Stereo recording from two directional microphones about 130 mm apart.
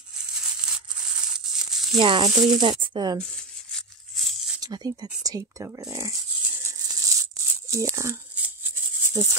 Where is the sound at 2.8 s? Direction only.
35° right (ahead or behind).